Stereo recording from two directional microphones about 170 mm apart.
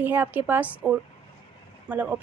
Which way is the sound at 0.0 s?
10° right (ahead or behind).